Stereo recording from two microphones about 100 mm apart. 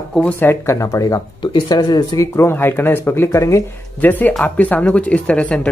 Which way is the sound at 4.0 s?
20° left (ahead or behind).